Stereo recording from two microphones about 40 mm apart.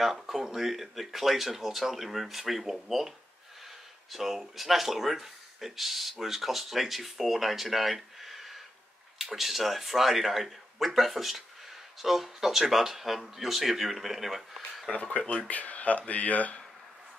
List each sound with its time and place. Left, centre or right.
0.0 s speech: centre
4.1 s speech: centre
14.9 s speech: left